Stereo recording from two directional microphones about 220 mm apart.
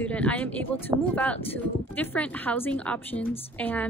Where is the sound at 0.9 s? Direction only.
15° right (ahead or behind).